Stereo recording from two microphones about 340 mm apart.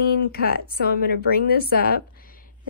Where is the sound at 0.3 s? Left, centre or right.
Left.